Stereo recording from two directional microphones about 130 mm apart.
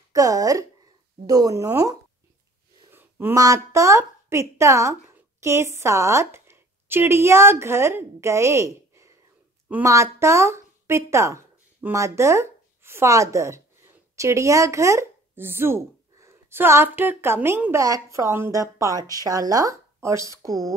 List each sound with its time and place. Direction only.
0.1 s a woman's voice: 25° right (ahead or behind)